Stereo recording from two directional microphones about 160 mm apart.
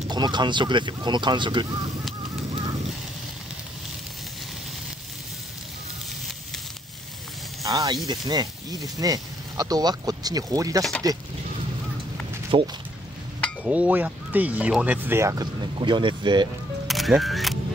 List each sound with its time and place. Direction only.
0.1 s speech: 25° right (ahead or behind)
7.6 s speech: 20° right (ahead or behind)
12.5 s speech: 30° right (ahead or behind)
13.7 s speech: 10° right (ahead or behind)
15.8 s speech: 30° right (ahead or behind)
16.8 s speech: centre (ahead or behind)